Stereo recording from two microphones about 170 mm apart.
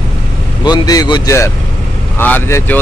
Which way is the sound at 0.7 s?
25° left (ahead or behind).